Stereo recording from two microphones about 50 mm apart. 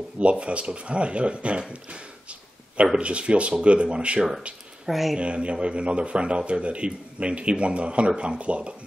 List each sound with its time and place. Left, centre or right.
0.2 s a man's voice: right
4.8 s speech: centre
5.1 s a man's voice: right